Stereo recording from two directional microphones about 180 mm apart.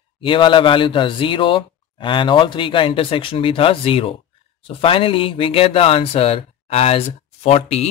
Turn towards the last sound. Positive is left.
turn(degrees=35)  # may be behind; listen again after turning